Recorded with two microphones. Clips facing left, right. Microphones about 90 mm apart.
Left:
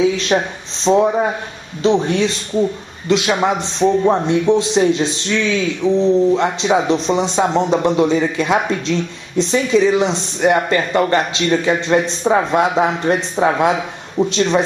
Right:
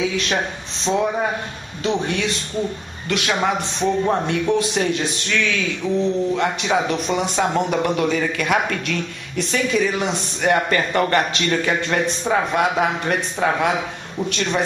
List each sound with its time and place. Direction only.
0.3 s speech: 20° left (ahead or behind)